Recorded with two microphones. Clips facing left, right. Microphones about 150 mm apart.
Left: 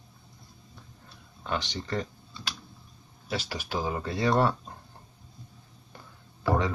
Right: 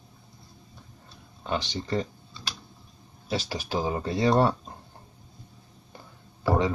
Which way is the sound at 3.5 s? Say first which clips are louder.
Right 3 dB; 25° right (ahead or behind).